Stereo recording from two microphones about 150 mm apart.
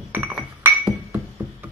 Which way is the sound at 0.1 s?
5° right (ahead or behind).